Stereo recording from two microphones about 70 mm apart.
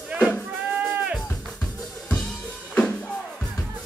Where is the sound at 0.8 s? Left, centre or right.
Centre.